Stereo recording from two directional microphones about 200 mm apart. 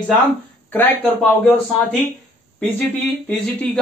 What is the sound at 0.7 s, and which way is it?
Speech, 10° left (ahead or behind).